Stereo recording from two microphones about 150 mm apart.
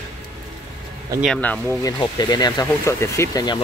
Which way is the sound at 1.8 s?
30° left (ahead or behind).